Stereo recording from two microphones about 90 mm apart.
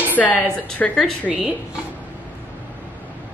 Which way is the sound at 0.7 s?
5° left (ahead or behind).